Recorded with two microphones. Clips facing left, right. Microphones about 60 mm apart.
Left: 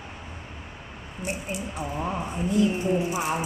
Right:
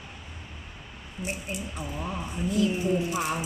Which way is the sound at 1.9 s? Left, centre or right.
Left.